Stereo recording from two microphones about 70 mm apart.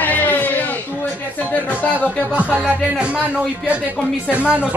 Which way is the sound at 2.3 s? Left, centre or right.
Centre.